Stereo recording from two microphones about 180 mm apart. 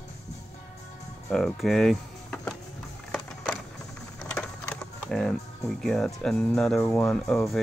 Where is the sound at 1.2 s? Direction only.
5° left (ahead or behind).